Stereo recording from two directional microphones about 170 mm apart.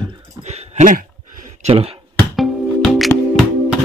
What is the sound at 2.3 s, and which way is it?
Music, centre (ahead or behind).